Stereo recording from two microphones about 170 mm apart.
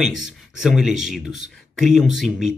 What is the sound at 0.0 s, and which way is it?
Speech, centre (ahead or behind).